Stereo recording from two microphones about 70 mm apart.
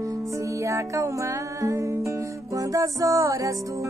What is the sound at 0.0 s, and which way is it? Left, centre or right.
Music, right.